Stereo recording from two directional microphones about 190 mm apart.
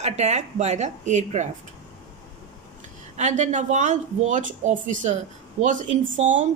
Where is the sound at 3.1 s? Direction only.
40° right (ahead or behind).